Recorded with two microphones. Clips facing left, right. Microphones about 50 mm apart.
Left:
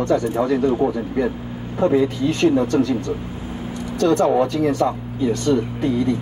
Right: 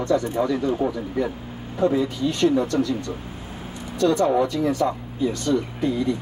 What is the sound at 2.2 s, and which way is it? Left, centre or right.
Speech, left.